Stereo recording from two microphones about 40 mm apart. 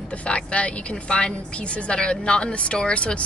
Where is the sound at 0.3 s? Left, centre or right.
Left.